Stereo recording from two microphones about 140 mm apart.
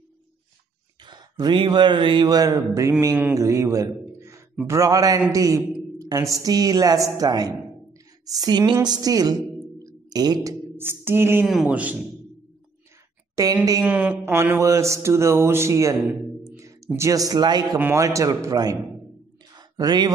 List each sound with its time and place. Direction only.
1.0 s a man's voice: 35° right (ahead or behind)
4.6 s mantra: 25° right (ahead or behind)
8.3 s a woman's voice: 30° right (ahead or behind)
10.8 s a sound: 15° right (ahead or behind)
13.4 s mantra: 25° right (ahead or behind)
13.8 s mantra: 10° right (ahead or behind)
16.4 s a man's voice: 20° right (ahead or behind)
17.7 s mantra: 15° right (ahead or behind)
19.5 s a sound: 30° right (ahead or behind)